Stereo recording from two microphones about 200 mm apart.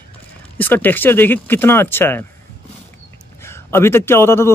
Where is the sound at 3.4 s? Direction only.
10° left (ahead or behind).